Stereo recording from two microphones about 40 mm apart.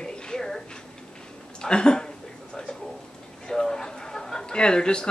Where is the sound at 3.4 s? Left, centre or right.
Centre.